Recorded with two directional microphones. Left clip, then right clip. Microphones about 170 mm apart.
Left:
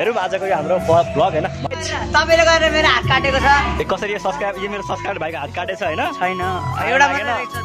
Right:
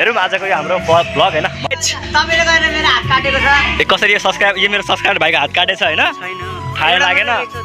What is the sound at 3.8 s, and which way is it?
A man's voice, centre (ahead or behind).